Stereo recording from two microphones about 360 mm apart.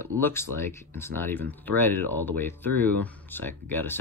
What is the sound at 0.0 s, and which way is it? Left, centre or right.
Speech, centre.